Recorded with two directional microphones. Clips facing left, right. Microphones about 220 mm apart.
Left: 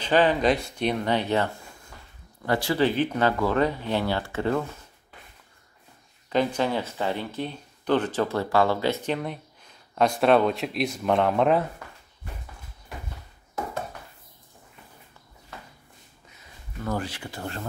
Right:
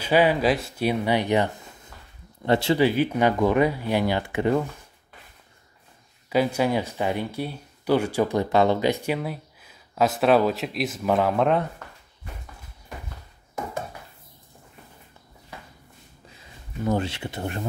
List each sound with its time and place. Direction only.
0.0 s speech: 10° right (ahead or behind)
2.8 s speech: 10° right (ahead or behind)
6.2 s speech: 10° right (ahead or behind)
16.8 s speech: 25° right (ahead or behind)